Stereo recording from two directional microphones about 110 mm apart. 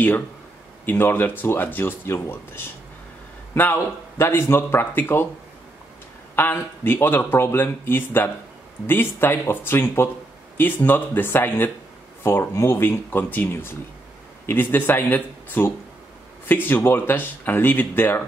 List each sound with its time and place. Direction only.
0.8 s speech: 20° left (ahead or behind)
6.3 s speech: 20° left (ahead or behind)